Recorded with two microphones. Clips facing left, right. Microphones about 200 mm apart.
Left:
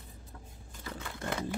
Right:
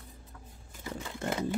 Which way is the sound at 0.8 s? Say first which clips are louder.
Right 4 dB; 20° right (ahead or behind).